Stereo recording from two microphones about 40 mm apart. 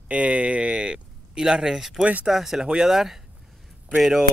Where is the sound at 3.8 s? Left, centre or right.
Right.